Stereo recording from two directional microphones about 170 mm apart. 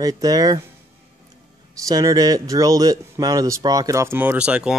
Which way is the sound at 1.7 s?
20° right (ahead or behind).